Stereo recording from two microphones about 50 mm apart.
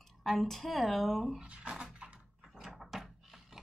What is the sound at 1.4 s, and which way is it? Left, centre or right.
Speech, right.